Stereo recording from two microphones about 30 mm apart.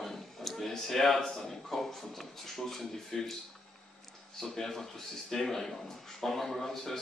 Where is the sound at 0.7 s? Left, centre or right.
Centre.